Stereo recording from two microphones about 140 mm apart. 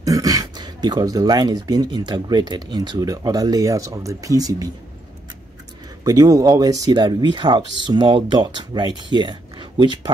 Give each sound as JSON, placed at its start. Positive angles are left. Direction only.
{"t": 0.0, "sound": "speech", "side_deg": -25}
{"t": 6.0, "sound": "speech", "side_deg": -25}